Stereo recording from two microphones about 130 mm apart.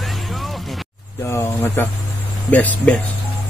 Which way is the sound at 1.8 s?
15° left (ahead or behind).